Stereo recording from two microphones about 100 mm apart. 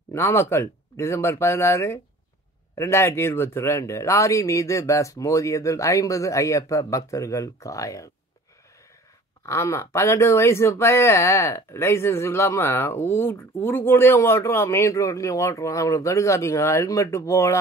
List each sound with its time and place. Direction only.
0.1 s speech: 25° left (ahead or behind)
9.5 s speech: 30° left (ahead or behind)